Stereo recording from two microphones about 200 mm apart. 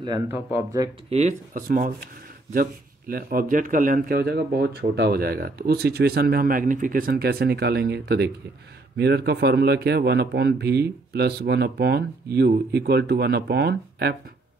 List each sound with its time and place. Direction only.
0.3 s speech: 10° right (ahead or behind)
1.1 s speech: 40° right (ahead or behind)